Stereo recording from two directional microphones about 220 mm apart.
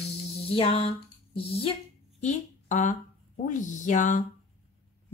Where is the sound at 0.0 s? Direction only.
25° left (ahead or behind).